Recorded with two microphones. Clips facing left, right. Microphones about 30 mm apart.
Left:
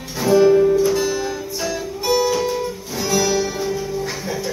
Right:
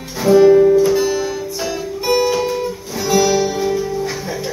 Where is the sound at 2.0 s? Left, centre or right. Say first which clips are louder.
Right 2 dB; centre.